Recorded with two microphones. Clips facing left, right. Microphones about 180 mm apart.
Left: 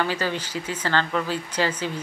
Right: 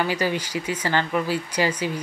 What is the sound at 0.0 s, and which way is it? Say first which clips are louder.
Speech: right 2 dB; 10° right (ahead or behind).